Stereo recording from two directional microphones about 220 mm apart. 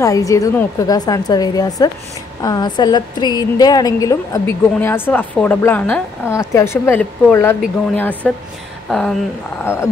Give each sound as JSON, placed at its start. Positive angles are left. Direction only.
{"t": 0.0, "sound": "a woman's voice", "side_deg": 15}